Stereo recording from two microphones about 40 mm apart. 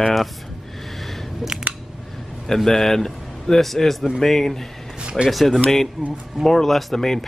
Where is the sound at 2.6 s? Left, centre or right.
Centre.